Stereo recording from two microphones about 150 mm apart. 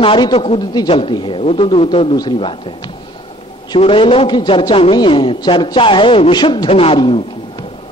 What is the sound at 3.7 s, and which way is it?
A man's voice, 35° left (ahead or behind).